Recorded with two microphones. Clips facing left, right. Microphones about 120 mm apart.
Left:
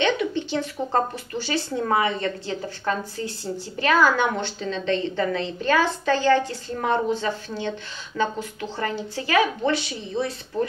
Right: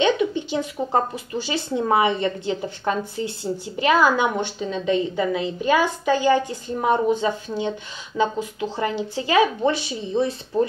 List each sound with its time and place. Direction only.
0.0 s speech: 15° right (ahead or behind)